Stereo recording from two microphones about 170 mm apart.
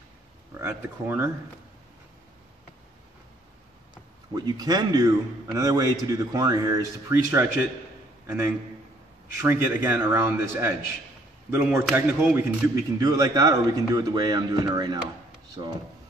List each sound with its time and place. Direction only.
0.6 s speech: 15° right (ahead or behind)
4.4 s a man's voice: 25° right (ahead or behind)
9.4 s a man's voice: 15° right (ahead or behind)